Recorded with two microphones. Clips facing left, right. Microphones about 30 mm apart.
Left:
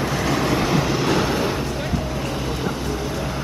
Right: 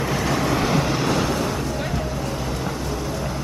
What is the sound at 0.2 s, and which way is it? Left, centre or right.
Vehicle, centre.